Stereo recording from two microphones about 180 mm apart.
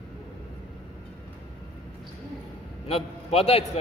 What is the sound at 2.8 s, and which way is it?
Speech, 30° left (ahead or behind).